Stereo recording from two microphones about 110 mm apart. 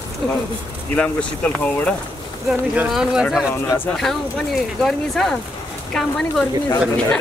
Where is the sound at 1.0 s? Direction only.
10° left (ahead or behind).